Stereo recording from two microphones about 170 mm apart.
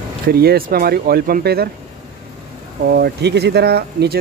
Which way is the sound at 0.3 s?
65° right (ahead or behind).